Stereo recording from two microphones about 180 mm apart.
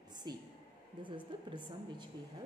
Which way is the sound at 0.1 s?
25° right (ahead or behind).